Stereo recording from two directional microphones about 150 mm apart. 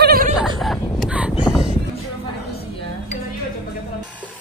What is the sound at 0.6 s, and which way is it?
Vehicle, centre (ahead or behind).